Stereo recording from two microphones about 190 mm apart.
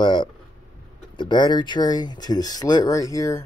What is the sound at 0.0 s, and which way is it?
Speech, 25° left (ahead or behind).